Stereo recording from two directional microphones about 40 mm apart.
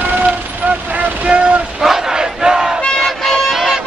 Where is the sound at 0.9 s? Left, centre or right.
Right.